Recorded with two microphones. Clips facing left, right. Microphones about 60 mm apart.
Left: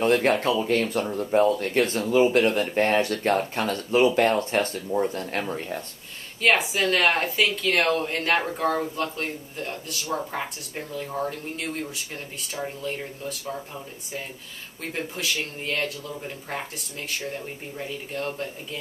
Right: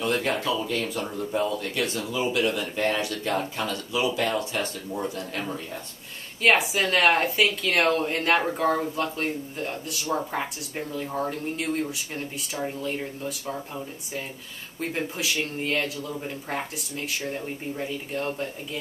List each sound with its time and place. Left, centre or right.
0.0 s speech: left
6.4 s speech: centre